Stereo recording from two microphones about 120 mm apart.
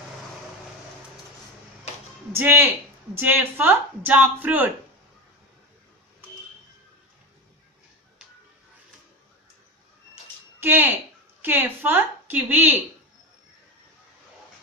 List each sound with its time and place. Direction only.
2.3 s speech: 15° right (ahead or behind)
10.6 s speech: 15° right (ahead or behind)